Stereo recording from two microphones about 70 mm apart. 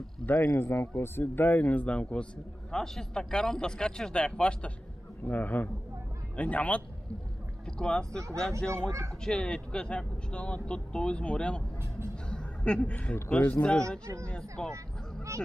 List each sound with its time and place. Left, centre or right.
0.3 s speech: left; by 11.6 s centre
12.3 s a sound: centre
12.8 s speech: left